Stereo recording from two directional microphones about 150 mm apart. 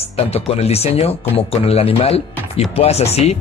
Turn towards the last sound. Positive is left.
turn(degrees=45)  # may be behind; listen again after turning